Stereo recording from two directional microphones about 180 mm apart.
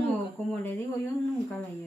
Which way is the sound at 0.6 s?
10° left (ahead or behind).